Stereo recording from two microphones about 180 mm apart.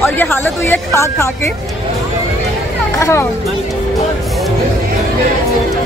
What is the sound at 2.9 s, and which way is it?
Speech, 15° left (ahead or behind).